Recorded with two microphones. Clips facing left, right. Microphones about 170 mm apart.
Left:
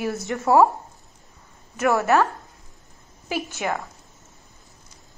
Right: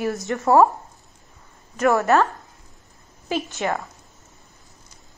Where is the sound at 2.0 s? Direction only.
15° left (ahead or behind).